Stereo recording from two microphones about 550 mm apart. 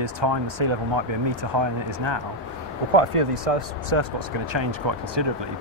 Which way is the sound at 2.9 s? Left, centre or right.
Right.